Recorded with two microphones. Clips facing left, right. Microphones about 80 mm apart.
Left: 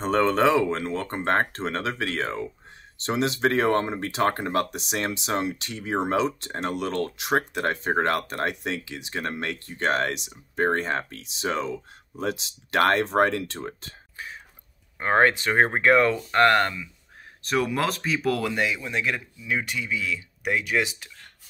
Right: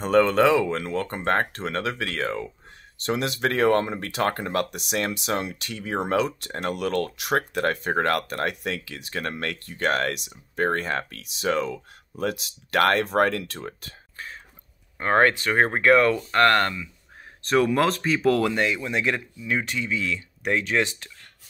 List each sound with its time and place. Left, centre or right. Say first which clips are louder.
0.0 s speech: right 2 dB; left
14.1 s a sound: even; centre
15.0 s speech: right 1 dB; centre